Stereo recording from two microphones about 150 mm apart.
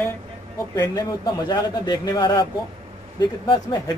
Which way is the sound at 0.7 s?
30° left (ahead or behind).